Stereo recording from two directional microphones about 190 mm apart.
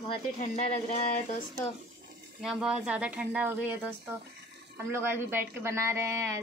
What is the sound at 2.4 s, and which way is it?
Speech, centre (ahead or behind).